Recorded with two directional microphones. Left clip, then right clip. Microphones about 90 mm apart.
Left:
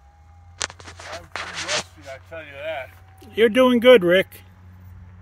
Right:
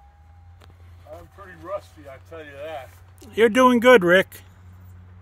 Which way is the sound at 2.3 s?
20° right (ahead or behind).